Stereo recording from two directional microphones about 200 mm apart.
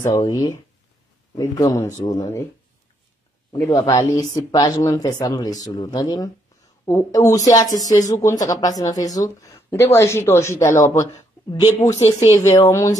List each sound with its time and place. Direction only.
0.0 s speech: 20° left (ahead or behind)
3.5 s speech: 15° left (ahead or behind)
11.8 s speech: 35° left (ahead or behind)
12.5 s speech: 15° left (ahead or behind)